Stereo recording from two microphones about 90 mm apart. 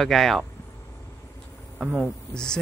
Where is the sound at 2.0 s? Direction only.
10° left (ahead or behind).